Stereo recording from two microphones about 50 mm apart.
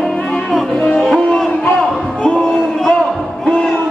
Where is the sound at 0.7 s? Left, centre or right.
Left.